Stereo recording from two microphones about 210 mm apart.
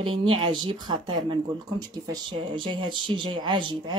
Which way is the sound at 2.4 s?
25° right (ahead or behind).